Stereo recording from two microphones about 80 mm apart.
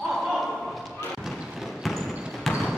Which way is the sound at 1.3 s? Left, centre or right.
Centre.